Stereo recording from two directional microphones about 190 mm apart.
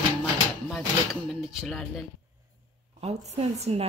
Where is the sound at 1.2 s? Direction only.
Centre (ahead or behind).